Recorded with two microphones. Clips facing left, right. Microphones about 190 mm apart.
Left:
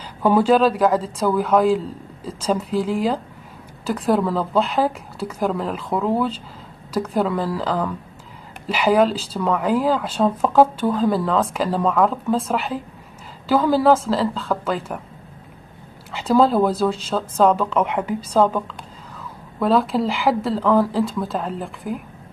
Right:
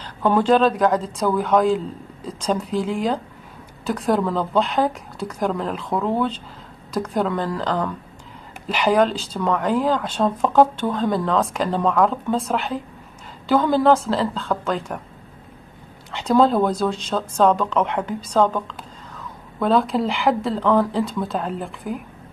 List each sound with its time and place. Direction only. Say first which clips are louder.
0.0 s speech: left 2 dB; 10° left (ahead or behind)
16.1 s speech: even; centre (ahead or behind)